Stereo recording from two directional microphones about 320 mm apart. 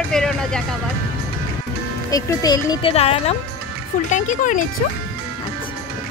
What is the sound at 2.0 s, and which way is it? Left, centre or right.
Speech, centre.